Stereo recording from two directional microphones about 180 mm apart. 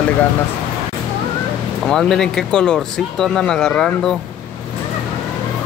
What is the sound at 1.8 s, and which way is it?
Speech, 5° left (ahead or behind).